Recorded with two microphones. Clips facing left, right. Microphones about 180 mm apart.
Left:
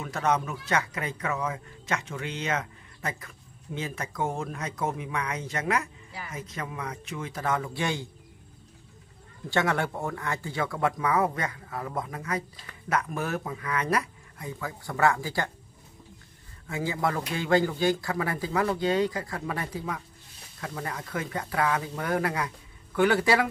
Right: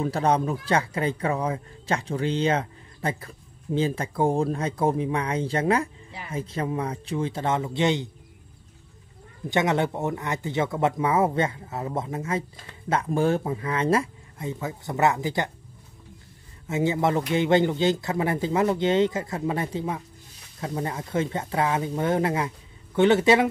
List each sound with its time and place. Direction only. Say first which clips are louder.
0.0 s speech: right 5 dB; 30° right (ahead or behind)
9.5 s speech: right 4 dB; 20° right (ahead or behind)
16.6 s speech: right 6 dB; 20° right (ahead or behind)